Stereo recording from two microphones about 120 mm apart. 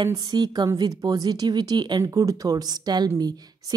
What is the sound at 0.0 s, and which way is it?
Speech, 35° right (ahead or behind).